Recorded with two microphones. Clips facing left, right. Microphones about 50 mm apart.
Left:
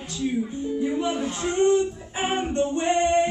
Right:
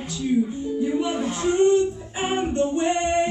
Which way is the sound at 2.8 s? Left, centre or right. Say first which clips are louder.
Left 1 dB; centre.